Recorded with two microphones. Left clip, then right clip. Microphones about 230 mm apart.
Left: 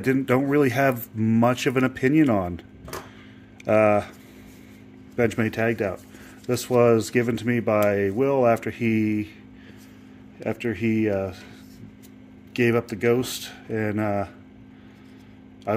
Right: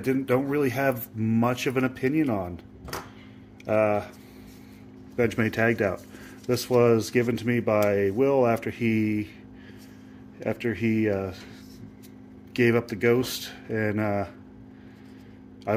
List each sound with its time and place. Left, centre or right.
0.0 s speech: left
3.6 s speech: left
5.1 s speech: centre
5.4 s speech: centre
6.4 s speech: centre
10.4 s speech: centre
12.5 s speech: centre